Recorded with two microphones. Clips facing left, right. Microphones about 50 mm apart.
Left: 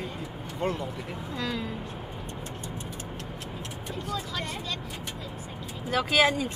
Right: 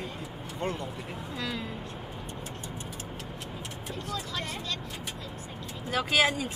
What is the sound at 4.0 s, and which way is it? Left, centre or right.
Speech, centre.